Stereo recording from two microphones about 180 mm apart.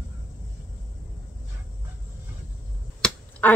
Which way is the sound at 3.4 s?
10° left (ahead or behind).